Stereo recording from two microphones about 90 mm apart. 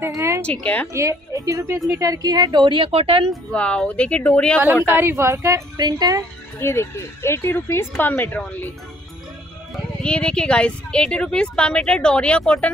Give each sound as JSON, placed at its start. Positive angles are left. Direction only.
{"t": 0.1, "sound": "a sound", "side_deg": -35}
{"t": 0.4, "sound": "speech", "side_deg": 15}
{"t": 0.9, "sound": "speech", "side_deg": -35}
{"t": 2.0, "sound": "speech", "side_deg": -45}
{"t": 3.5, "sound": "speech", "side_deg": 15}
{"t": 4.8, "sound": "speech", "side_deg": -25}
{"t": 5.8, "sound": "speech", "side_deg": -50}
{"t": 6.6, "sound": "speech", "side_deg": 30}
{"t": 10.0, "sound": "speech", "side_deg": 10}